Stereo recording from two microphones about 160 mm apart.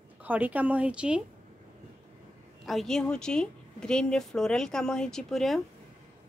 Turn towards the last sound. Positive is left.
turn(degrees=0)  # may be behind; listen again after turning